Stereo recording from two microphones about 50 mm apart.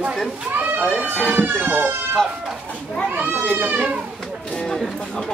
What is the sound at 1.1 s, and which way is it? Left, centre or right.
Speech, left.